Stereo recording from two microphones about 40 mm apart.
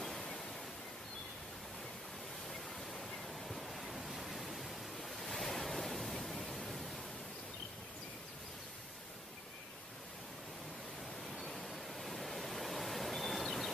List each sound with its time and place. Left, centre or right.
0.0 s waves: centre
2.9 s waves: centre
11.3 s waves: centre